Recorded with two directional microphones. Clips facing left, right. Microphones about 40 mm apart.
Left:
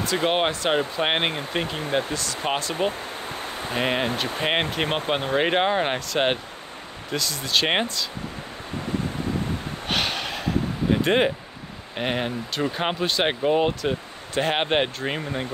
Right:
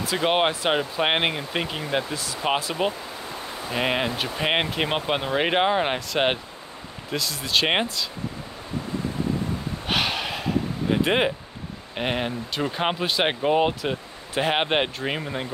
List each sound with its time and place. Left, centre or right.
0.0 s speech: centre
2.9 s a sound: left
3.7 s speech: centre
9.8 s snort: centre
10.9 s speech: centre